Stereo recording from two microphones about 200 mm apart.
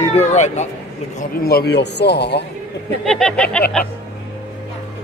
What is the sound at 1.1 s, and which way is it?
A man's voice, 50° left (ahead or behind).